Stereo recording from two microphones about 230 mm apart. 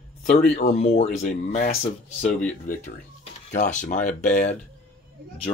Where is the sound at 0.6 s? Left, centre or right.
Left.